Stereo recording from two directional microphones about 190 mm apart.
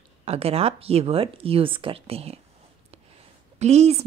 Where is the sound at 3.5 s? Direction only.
35° right (ahead or behind).